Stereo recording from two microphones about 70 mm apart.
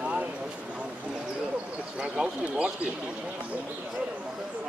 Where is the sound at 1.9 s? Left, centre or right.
Centre.